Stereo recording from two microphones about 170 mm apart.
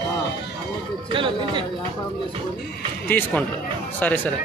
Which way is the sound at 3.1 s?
10° left (ahead or behind).